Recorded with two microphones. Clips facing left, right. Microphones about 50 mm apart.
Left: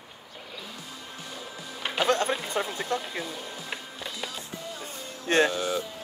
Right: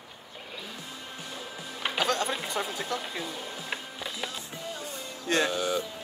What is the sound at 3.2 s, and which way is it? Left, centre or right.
Music, centre.